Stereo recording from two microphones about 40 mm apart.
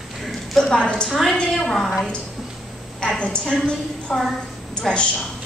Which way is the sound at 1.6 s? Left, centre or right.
Centre.